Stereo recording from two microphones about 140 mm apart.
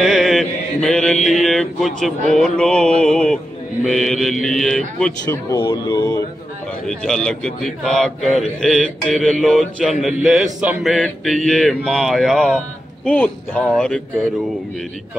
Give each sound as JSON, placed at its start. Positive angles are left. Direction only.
{"t": 0.0, "sound": "mantra", "side_deg": 0}
{"t": 3.0, "sound": "speech", "side_deg": 5}
{"t": 3.8, "sound": "mantra", "side_deg": 5}
{"t": 5.6, "sound": "speech", "side_deg": 25}
{"t": 6.9, "sound": "mantra", "side_deg": 5}
{"t": 13.0, "sound": "speech", "side_deg": 10}